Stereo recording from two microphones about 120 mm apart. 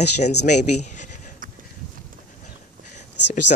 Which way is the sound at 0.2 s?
70° left (ahead or behind).